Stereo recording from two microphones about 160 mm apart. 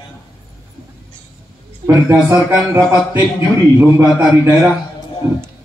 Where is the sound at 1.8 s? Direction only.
15° right (ahead or behind).